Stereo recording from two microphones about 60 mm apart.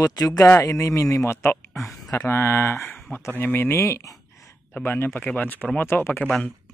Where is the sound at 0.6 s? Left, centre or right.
Left.